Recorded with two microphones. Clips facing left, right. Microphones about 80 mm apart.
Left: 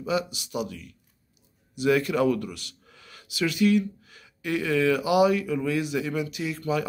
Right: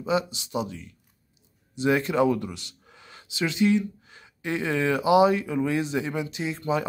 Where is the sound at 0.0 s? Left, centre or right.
Right.